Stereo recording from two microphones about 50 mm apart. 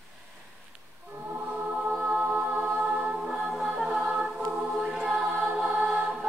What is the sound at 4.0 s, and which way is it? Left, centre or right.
Music, centre.